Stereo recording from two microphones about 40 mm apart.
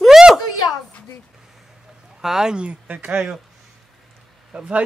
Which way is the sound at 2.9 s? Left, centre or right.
Right.